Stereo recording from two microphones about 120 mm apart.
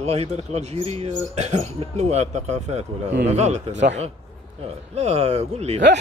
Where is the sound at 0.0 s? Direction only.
60° right (ahead or behind).